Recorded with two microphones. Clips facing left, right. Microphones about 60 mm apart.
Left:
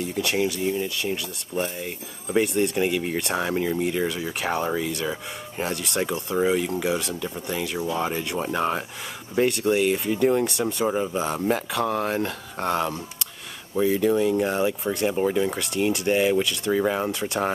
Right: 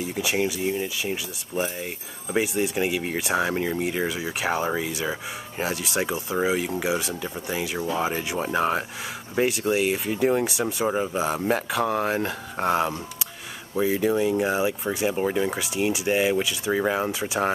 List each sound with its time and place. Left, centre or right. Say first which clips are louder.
0.0 s speech: left 1 dB; centre